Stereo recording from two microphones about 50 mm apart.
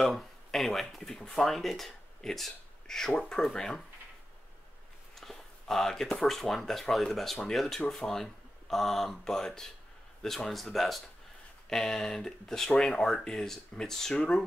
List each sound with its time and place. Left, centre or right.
0.0 s speech: centre
5.1 s speech: centre
14.1 s speech: centre